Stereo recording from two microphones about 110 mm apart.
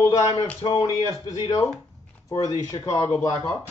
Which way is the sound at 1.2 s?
35° left (ahead or behind).